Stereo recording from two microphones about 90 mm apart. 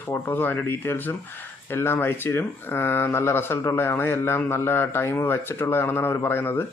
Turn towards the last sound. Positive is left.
turn(degrees=25)  # may be behind; listen again after turning